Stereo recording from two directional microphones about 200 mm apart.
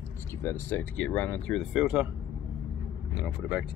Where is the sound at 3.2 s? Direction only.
5° right (ahead or behind).